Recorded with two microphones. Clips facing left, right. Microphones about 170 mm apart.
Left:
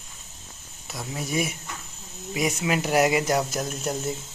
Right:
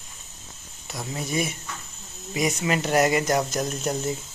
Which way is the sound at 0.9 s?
5° left (ahead or behind).